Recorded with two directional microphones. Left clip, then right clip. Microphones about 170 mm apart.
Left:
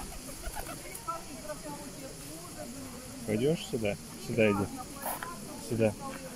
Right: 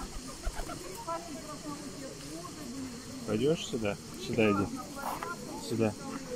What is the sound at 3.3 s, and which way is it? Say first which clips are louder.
Speech: even; 25° left (ahead or behind).